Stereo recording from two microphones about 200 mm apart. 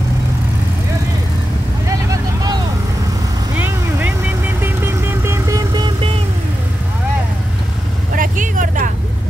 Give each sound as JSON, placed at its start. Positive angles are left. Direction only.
{"t": 1.9, "sound": "vehicle", "side_deg": -15}
{"t": 8.2, "sound": "vehicle", "side_deg": -40}